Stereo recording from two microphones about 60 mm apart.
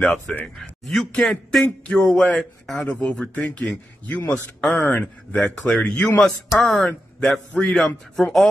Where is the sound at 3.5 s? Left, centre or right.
Left.